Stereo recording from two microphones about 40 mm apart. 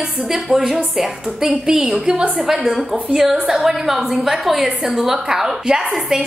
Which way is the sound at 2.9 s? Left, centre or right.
Centre.